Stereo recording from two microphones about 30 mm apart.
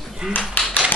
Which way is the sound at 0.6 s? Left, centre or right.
Left.